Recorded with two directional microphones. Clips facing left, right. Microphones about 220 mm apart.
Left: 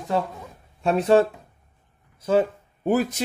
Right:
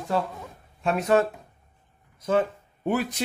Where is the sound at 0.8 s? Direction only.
30° left (ahead or behind).